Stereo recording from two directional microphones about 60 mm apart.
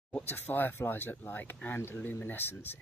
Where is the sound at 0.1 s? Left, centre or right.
Left.